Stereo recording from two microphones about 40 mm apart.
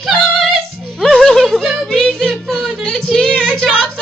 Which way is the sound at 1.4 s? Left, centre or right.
Centre.